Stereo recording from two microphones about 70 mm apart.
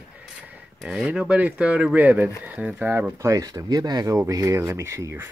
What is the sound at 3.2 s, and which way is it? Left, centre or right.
Speech, right.